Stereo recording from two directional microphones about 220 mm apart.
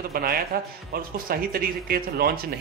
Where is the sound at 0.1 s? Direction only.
40° right (ahead or behind).